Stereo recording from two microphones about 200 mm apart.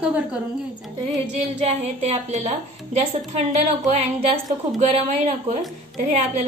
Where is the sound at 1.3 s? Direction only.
35° right (ahead or behind).